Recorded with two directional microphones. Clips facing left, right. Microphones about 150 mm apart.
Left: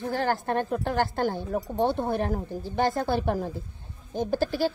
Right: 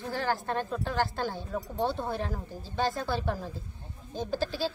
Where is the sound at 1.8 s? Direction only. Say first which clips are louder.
Left 5 dB; 20° left (ahead or behind).